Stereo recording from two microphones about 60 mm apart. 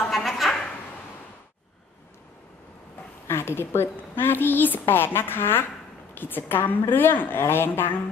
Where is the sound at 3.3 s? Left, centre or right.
Left.